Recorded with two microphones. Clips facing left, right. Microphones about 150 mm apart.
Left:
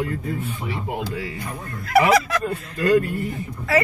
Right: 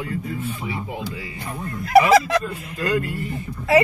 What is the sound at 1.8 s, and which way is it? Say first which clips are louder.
Honk: right 3 dB; 25° right (ahead or behind).